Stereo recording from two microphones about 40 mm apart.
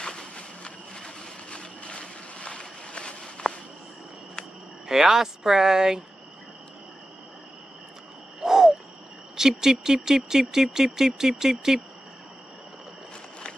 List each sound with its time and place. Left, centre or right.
0.0 s vehicle: left
3.2 s walk: centre
4.8 s speech: centre
8.4 s owl: centre
9.4 s speech: centre